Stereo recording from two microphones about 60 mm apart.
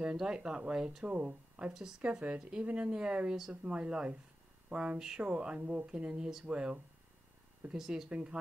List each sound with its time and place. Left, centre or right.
0.0 s speech: centre
1.7 s speech: centre
2.0 s speech: right